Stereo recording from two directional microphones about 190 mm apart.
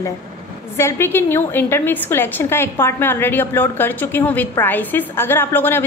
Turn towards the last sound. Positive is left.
turn(degrees=10)  # may be behind; listen again after turning